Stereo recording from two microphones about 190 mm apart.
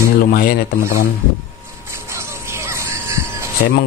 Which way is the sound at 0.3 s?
50° left (ahead or behind).